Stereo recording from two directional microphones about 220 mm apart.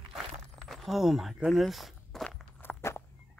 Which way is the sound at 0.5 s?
Centre (ahead or behind).